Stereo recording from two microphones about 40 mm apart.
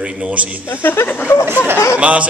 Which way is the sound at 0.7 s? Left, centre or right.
Left.